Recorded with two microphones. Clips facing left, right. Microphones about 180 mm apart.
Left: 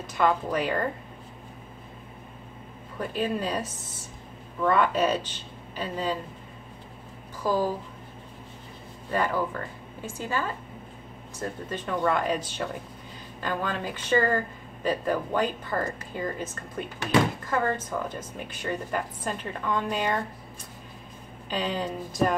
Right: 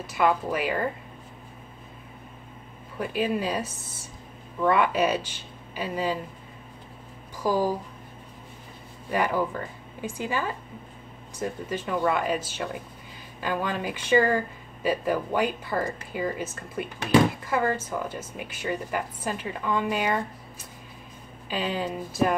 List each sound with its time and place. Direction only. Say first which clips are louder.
0.0 s speech: right 1 dB; 5° right (ahead or behind)
3.0 s speech: right 2 dB; 10° right (ahead or behind)
7.4 s speech: right 1 dB; 10° right (ahead or behind)
9.1 s speech: right 1 dB; 15° right (ahead or behind)
21.5 s speech: right 1 dB; 5° right (ahead or behind)